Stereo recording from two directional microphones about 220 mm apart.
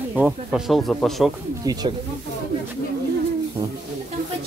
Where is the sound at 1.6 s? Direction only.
15° right (ahead or behind).